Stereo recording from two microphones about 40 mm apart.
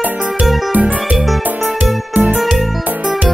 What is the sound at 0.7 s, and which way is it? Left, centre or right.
Music, right.